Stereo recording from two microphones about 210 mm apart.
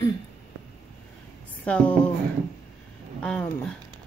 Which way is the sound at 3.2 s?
5° left (ahead or behind).